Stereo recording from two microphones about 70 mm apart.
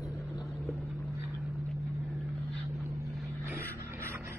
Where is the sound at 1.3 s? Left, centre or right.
Centre.